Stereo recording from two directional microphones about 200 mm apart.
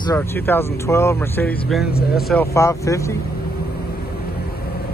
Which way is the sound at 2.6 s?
15° left (ahead or behind).